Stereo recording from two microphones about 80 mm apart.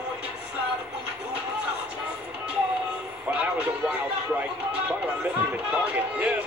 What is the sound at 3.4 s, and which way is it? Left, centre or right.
Music, centre.